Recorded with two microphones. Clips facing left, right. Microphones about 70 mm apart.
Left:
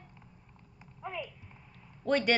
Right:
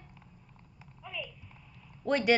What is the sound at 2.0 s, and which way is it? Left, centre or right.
Speech, centre.